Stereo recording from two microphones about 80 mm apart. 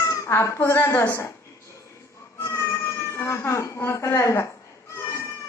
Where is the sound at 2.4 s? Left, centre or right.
Left.